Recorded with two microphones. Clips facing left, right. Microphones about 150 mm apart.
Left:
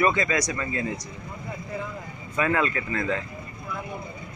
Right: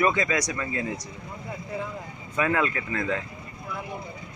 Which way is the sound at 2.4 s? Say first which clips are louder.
Left 1 dB; 10° right (ahead or behind).